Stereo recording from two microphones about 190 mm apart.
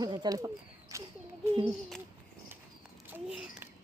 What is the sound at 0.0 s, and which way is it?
Speech, 20° right (ahead or behind).